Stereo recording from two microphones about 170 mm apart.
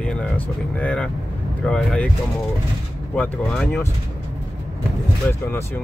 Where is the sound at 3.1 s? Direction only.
5° left (ahead or behind).